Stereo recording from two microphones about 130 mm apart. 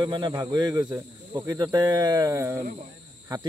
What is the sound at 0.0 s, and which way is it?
Speech, 35° right (ahead or behind).